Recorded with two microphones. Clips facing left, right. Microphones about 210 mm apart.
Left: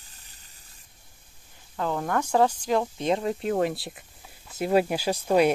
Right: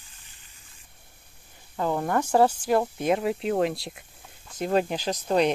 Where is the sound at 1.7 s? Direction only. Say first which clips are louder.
Right 2 dB; 10° right (ahead or behind).